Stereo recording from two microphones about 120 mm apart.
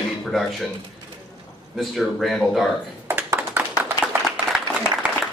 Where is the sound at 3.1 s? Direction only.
15° right (ahead or behind).